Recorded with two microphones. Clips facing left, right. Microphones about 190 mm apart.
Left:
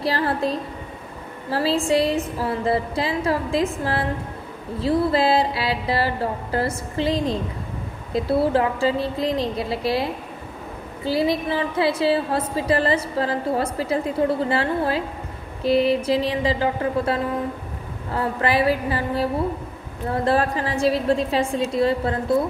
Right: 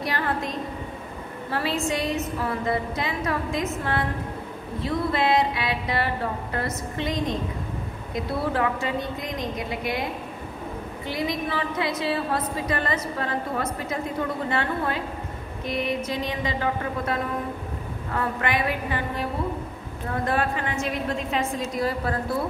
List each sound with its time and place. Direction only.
0.0 s a woman's voice: 35° left (ahead or behind)
4.7 s a woman's voice: 30° left (ahead or behind)
11.1 s a woman's voice: 30° left (ahead or behind)